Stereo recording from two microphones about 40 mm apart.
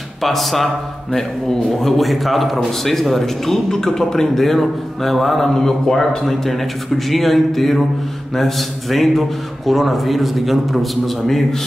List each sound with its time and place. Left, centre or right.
0.2 s a man's voice: centre